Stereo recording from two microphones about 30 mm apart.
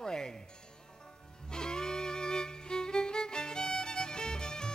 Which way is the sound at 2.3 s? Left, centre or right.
Left.